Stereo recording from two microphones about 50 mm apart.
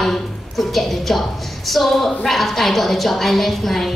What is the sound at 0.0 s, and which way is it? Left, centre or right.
A woman's voice, centre.